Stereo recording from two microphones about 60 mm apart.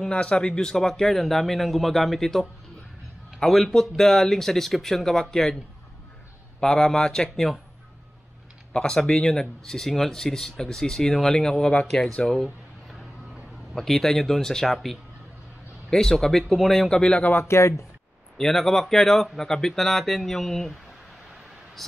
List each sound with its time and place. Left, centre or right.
0.0 s a man's voice: centre
6.6 s speech: centre
8.7 s a man's voice: centre
13.7 s a man's voice: centre
17.2 s speech: left
17.5 s speech: left
18.4 s a man's voice: centre
21.8 s speech: centre